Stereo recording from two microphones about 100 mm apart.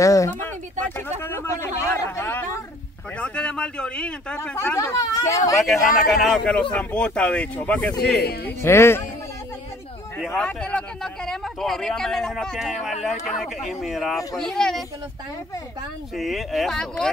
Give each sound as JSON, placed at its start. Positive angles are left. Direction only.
{"t": 0.0, "sound": "speech", "side_deg": 30}
{"t": 0.4, "sound": "a sound", "side_deg": 20}
{"t": 1.2, "sound": "speech", "side_deg": 20}
{"t": 3.2, "sound": "speech", "side_deg": 10}
{"t": 4.4, "sound": "speech", "side_deg": 25}
{"t": 5.6, "sound": "speech", "side_deg": 0}
{"t": 8.5, "sound": "speech", "side_deg": 25}
{"t": 10.2, "sound": "speech", "side_deg": 5}
{"t": 16.2, "sound": "speech", "side_deg": 0}